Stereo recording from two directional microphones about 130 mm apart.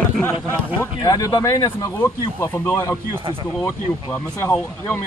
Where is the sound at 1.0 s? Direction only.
25° left (ahead or behind).